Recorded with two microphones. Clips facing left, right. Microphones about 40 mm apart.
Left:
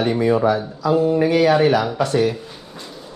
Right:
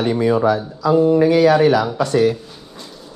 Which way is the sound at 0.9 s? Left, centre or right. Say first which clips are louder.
Right 3 dB; left.